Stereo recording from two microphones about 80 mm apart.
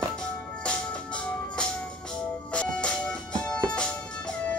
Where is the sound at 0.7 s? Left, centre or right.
Centre.